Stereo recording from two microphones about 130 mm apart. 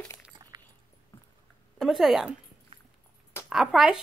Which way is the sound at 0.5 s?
30° right (ahead or behind).